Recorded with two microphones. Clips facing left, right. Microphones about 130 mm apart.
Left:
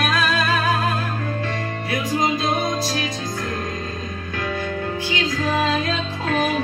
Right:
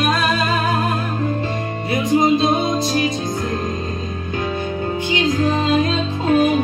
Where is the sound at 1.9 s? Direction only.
25° right (ahead or behind).